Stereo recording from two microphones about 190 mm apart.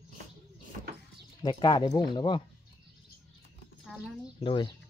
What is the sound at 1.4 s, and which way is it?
Speech, 20° left (ahead or behind).